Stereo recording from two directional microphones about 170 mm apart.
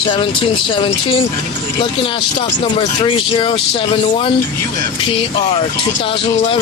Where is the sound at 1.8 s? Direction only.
30° left (ahead or behind).